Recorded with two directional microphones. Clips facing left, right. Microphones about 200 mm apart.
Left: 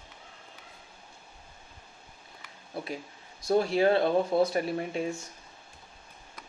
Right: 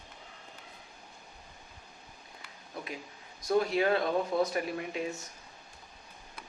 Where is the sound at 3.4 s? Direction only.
30° left (ahead or behind).